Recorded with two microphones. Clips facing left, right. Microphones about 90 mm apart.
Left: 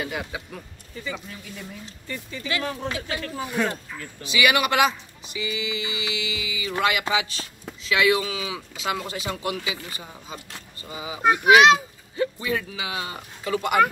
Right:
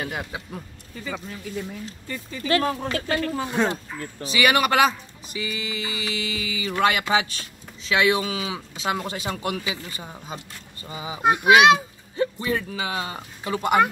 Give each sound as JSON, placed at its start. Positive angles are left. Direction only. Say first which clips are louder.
{"t": 0.0, "sound": "speech", "louder": "even", "side_deg": -30}
{"t": 2.0, "sound": "speech", "louder": "right 5 dB", "side_deg": -40}
{"t": 3.3, "sound": "speech", "louder": "left 1 dB", "side_deg": -25}
{"t": 4.0, "sound": "speech", "louder": "right 1 dB", "side_deg": -40}
{"t": 11.2, "sound": "speech", "louder": "even", "side_deg": -20}
{"t": 12.2, "sound": "speech", "louder": "right 1 dB", "side_deg": -35}